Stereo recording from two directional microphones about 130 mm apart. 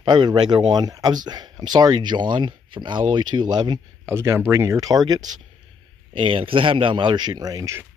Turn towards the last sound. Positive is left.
turn(degrees=-25)  # may be behind; listen again after turning